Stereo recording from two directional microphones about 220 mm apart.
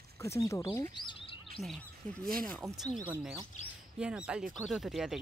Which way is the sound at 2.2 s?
40° right (ahead or behind).